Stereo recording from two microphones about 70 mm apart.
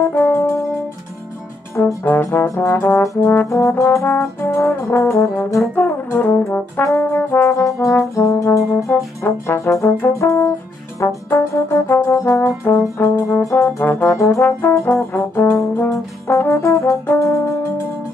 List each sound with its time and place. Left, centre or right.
0.1 s music: left
0.4 s music: left
2.0 s brass instrument: left
2.4 s brass instrument: left
2.7 s brass instrument: left
3.4 s brass instrument: left
5.8 s brass instrument: left
7.2 s brass instrument: left
14.1 s brass instrument: left
17.0 s music: left